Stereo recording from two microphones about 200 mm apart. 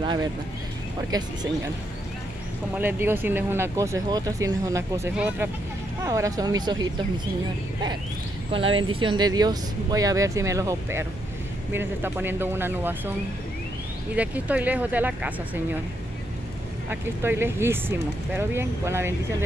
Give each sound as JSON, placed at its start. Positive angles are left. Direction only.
{"t": 0.0, "sound": "speech", "side_deg": -25}
{"t": 2.8, "sound": "speech", "side_deg": -10}
{"t": 8.7, "sound": "speech", "side_deg": -25}
{"t": 14.1, "sound": "speech", "side_deg": -5}
{"t": 16.9, "sound": "speech", "side_deg": -10}